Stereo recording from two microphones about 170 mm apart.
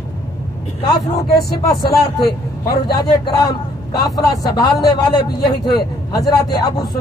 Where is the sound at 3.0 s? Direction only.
20° left (ahead or behind).